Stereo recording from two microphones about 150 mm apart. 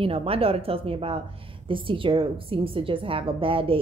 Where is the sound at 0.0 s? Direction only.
40° right (ahead or behind).